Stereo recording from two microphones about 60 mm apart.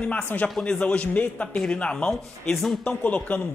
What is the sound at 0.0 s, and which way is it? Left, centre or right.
Speech, left.